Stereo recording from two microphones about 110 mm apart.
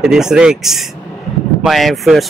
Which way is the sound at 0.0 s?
5° right (ahead or behind).